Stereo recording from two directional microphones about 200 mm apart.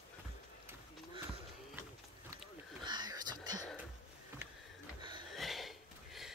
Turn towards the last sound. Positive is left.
turn(degrees=0)  # may be behind; listen again after turning